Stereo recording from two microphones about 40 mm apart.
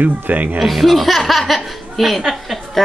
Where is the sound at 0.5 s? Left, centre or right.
Centre.